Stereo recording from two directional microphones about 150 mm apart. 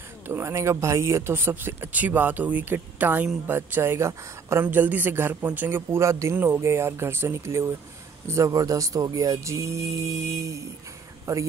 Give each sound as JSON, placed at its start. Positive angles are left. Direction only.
{"t": 0.3, "sound": "a man's voice", "side_deg": -20}
{"t": 11.3, "sound": "speech", "side_deg": -20}